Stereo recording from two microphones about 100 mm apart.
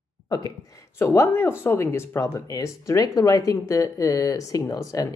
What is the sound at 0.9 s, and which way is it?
Speech, 25° left (ahead or behind).